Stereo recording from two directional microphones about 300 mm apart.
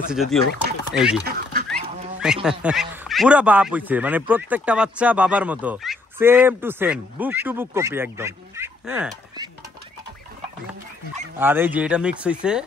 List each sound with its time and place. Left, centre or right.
0.1 s speech: centre
1.2 s duck: right
1.7 s speech: centre
11.3 s speech: centre